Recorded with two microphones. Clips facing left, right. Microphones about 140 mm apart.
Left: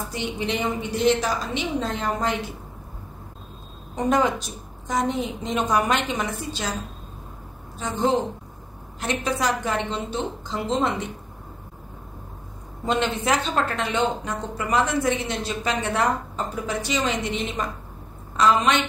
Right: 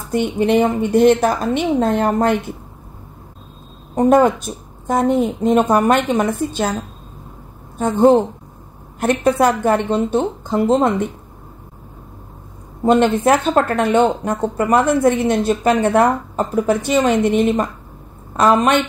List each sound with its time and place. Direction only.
0.1 s speech: 55° right (ahead or behind)
3.9 s speech: 50° right (ahead or behind)
7.7 s speech: 55° right (ahead or behind)
12.8 s speech: 50° right (ahead or behind)